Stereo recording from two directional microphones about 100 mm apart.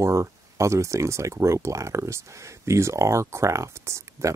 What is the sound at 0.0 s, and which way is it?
Speech, 30° right (ahead or behind).